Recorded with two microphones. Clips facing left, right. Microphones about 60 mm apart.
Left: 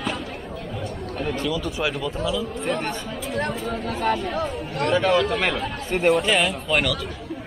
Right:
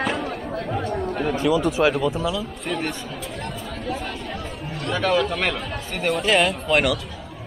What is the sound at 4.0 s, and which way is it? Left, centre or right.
Speech, left.